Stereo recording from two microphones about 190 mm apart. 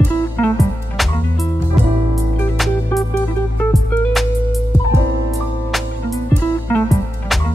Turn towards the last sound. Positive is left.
turn(degrees=15)  # may be behind; listen again after turning